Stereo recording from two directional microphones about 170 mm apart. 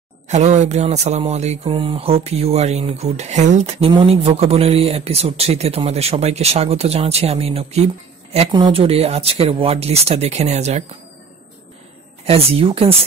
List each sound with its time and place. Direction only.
0.3 s speech: 40° right (ahead or behind)
8.5 s speech: 25° right (ahead or behind); by 10.8 s 40° right (ahead or behind)
12.3 s speech: 35° right (ahead or behind)